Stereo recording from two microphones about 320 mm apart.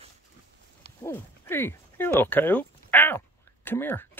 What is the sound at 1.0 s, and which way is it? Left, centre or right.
Speech, centre.